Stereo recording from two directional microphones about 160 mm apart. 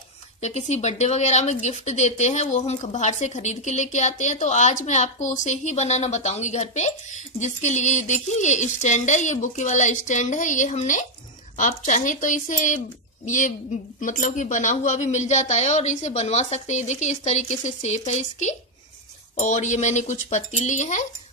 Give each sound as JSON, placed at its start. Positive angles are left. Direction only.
{"t": 0.4, "sound": "speech", "side_deg": 45}